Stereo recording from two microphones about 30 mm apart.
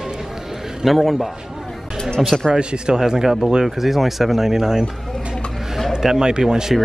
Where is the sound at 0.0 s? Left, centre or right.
Centre.